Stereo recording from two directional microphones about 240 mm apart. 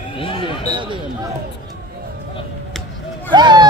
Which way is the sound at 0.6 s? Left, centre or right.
Centre.